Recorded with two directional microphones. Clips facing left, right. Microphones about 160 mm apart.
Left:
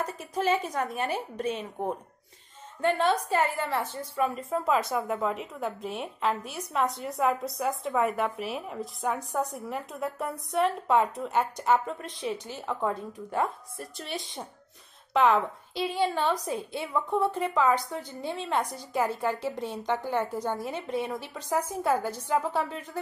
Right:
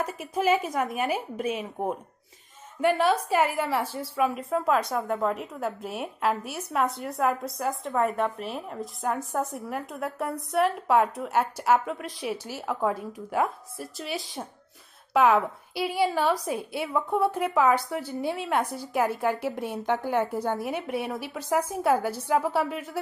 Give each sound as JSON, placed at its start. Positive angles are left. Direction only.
{"t": 0.0, "sound": "a woman's voice", "side_deg": -10}